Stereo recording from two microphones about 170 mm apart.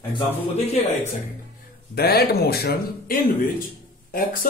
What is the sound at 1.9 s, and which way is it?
Speech, 65° left (ahead or behind).